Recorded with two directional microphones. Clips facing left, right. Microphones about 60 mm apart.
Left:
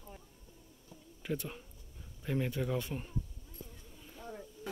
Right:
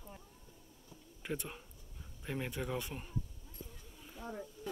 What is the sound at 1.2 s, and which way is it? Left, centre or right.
Speech, centre.